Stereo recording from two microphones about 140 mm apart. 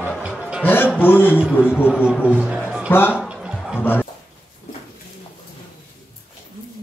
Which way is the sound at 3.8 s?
15° left (ahead or behind).